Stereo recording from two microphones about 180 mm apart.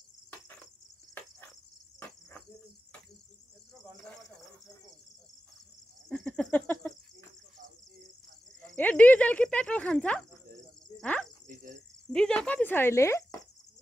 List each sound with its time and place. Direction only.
2.0 s cricket: 10° left (ahead or behind)
6.0 s cricket: 5° left (ahead or behind)
8.5 s cricket: 5° left (ahead or behind)
11.4 s cricket: 50° right (ahead or behind)
12.1 s speech: 5° left (ahead or behind)